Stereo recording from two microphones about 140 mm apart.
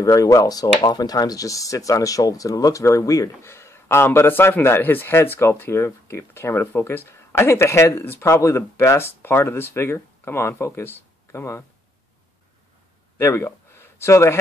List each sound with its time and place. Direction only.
0.0 s speech: 25° left (ahead or behind)
13.2 s speech: 20° left (ahead or behind)